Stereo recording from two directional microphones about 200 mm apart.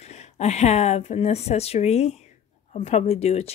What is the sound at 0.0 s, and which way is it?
A woman's voice, 35° left (ahead or behind).